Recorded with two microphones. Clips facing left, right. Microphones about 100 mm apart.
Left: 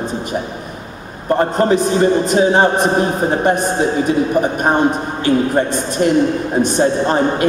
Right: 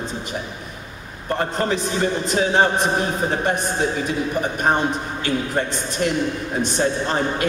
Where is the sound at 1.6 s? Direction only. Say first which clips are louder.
Left 9 dB; 45° left (ahead or behind).